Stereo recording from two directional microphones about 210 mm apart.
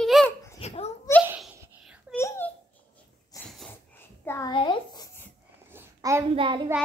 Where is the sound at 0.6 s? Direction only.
30° left (ahead or behind).